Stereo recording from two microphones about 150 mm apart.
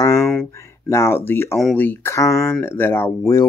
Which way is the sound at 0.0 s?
20° left (ahead or behind).